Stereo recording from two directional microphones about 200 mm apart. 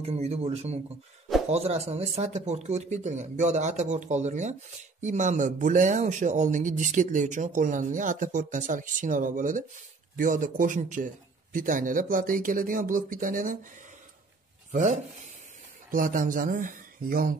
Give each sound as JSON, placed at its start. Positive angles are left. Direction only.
{"t": 0.0, "sound": "speech", "side_deg": -30}
{"t": 14.7, "sound": "speech", "side_deg": -40}